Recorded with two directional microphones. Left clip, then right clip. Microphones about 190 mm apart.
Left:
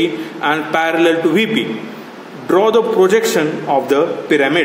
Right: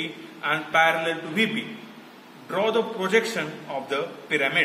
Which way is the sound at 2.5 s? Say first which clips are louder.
Left 12 dB; 60° left (ahead or behind).